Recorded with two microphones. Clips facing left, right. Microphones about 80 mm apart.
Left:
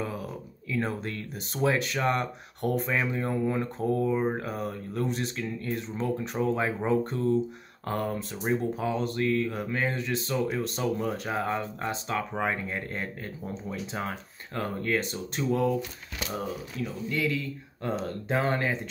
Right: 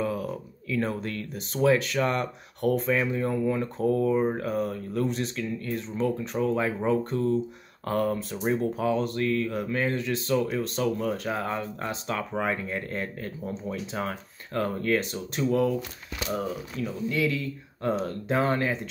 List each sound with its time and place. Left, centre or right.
0.7 s speech: centre
17.1 s speech: centre